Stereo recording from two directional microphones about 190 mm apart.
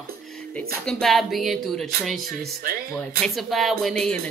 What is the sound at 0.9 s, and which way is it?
Speech, centre (ahead or behind).